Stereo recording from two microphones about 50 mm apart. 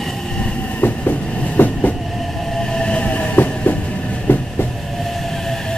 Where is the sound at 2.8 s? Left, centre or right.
Left.